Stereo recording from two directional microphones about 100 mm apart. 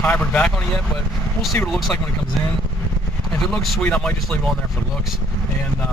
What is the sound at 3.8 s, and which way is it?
Speech, 10° left (ahead or behind).